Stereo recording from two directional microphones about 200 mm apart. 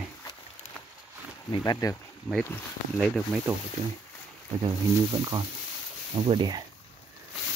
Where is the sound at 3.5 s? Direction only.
10° right (ahead or behind).